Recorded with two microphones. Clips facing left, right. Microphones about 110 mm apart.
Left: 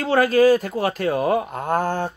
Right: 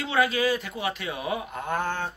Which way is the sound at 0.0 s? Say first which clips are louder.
Left 8 dB; 40° left (ahead or behind).